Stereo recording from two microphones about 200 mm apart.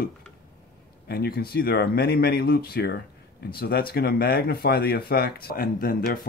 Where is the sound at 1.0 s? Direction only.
50° left (ahead or behind).